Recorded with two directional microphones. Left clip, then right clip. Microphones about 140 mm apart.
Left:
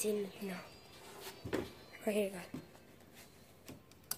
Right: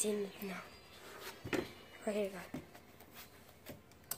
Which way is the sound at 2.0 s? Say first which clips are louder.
Left 2 dB; 35° left (ahead or behind).